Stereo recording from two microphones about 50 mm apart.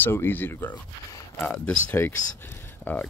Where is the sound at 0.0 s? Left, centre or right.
Left.